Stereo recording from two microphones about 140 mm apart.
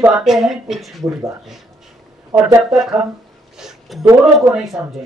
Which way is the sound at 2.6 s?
5° right (ahead or behind).